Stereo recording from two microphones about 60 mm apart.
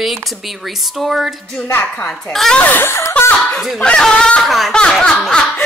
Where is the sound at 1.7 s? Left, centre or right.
Left.